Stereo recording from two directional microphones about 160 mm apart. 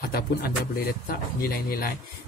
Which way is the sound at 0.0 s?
75° left (ahead or behind).